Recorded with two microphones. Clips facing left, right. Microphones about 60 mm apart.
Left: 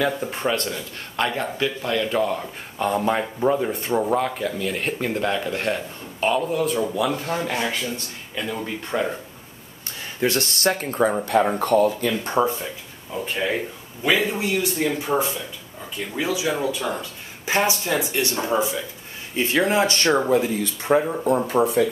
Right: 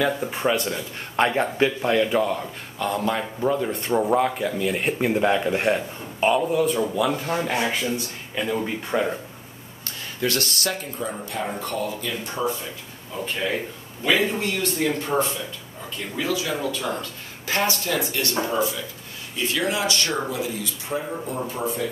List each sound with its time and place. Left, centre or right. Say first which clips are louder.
0.0 s speech: even; centre
1.1 s a man's voice: right 3 dB; right
2.0 s speech: even; centre
2.8 s speech: left 3 dB; centre
3.7 s speech: right 1 dB; centre
10.2 s speech: left 3 dB; left
10.8 s speech: left 9 dB; left
11.5 s speech: left 9 dB; left
13.1 s speech: left 2 dB; centre
16.2 s speech: left 2 dB; centre
19.3 s speech: left 5 dB; left
21.5 s speech: left 9 dB; left